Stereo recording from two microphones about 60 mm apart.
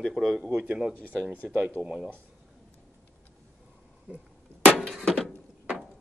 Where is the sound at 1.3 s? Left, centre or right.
Right.